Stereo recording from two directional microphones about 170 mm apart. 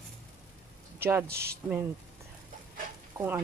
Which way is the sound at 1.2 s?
70° right (ahead or behind).